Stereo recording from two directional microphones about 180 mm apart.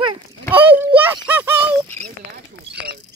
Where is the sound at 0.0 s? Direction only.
30° right (ahead or behind).